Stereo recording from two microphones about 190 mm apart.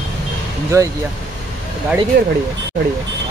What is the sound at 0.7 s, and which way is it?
Speech, 15° right (ahead or behind).